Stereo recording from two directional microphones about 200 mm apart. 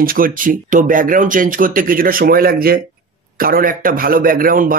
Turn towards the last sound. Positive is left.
turn(degrees=-45)  # may be behind; listen again after turning